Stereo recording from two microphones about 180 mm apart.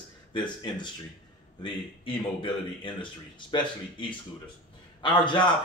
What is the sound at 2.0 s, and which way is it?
A man's voice, 30° left (ahead or behind).